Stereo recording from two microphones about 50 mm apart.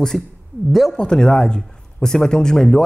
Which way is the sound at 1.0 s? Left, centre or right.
Centre.